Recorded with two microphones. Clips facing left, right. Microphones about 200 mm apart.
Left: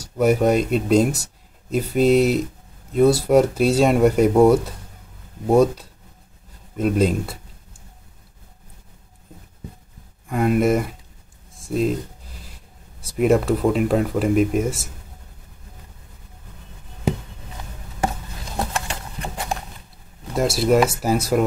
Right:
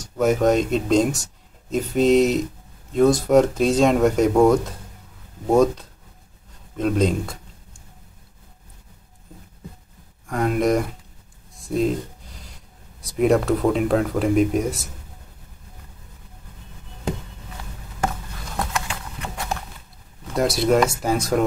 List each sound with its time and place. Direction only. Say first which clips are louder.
0.0 s speech: left 1 dB; 10° left (ahead or behind)
10.2 s speech: left 2 dB; 5° left (ahead or behind)
11.5 s a sound: even; centre (ahead or behind)
13.0 s speech: left 1 dB; centre (ahead or behind)
18.6 s horse: left 1 dB; 30° left (ahead or behind)
20.3 s speech: left 1 dB; centre (ahead or behind)